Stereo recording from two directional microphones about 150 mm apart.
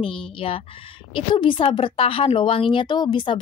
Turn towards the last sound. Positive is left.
turn(degrees=30)  # may be behind; listen again after turning